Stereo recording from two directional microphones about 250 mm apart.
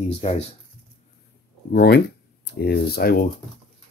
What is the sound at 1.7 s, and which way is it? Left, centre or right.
Speech, left.